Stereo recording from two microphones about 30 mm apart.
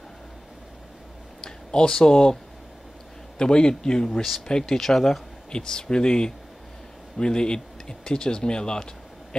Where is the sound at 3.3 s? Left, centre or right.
Left.